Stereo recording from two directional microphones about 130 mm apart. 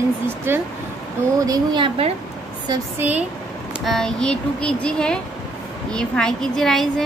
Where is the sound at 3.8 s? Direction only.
5° left (ahead or behind).